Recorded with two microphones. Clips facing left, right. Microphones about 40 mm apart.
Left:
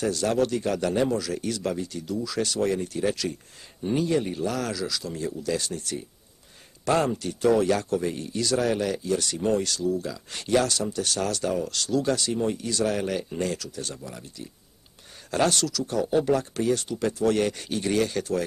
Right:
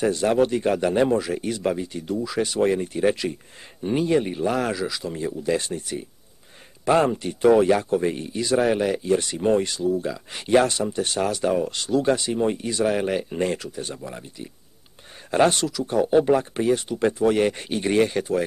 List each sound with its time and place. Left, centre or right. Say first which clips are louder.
0.0 s speech: right 4 dB; right